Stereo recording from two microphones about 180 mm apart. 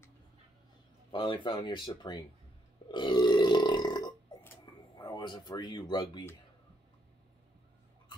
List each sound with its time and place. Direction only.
1.1 s speech: 30° left (ahead or behind)
2.9 s burping: 25° left (ahead or behind)
4.4 s tick-tock: 15° left (ahead or behind)
5.1 s speech: 25° left (ahead or behind)